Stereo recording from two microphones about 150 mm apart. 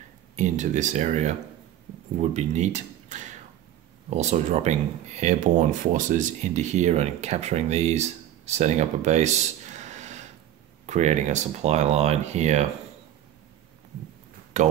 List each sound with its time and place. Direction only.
0.4 s speech: 50° right (ahead or behind)
14.5 s speech: 50° right (ahead or behind)